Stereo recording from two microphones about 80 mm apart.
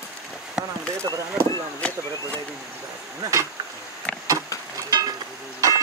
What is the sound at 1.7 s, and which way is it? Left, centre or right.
Speech, centre.